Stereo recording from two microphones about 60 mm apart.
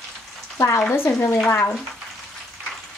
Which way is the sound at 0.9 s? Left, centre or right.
Left.